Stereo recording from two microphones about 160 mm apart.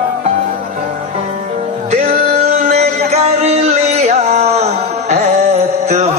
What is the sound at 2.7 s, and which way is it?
Music, 40° right (ahead or behind).